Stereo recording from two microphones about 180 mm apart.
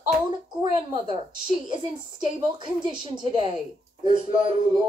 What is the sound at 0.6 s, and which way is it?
Speech, 25° right (ahead or behind).